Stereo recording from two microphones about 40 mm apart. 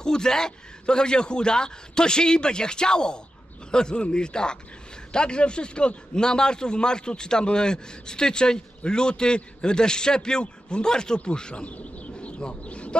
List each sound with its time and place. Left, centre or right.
0.0 s speech: centre
11.7 s bird: left